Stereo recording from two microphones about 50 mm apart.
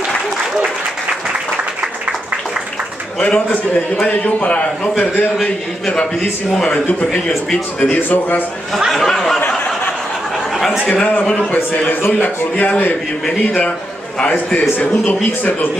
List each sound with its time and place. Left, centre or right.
3.2 s a man's voice: left
5.4 s a man's voice: centre
7.9 s a man's voice: left
8.7 s a man's voice: centre
11.5 s a man's voice: left
14.2 s a man's voice: left